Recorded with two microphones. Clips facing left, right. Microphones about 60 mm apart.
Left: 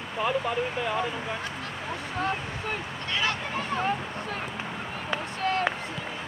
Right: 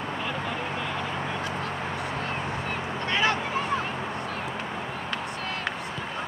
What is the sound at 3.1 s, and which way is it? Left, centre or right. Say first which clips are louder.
Speech: right 4 dB; right.